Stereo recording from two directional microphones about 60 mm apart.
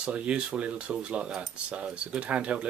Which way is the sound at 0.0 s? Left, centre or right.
Centre.